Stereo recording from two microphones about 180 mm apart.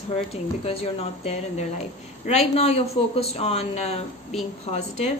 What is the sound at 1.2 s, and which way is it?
A woman's voice, 40° left (ahead or behind).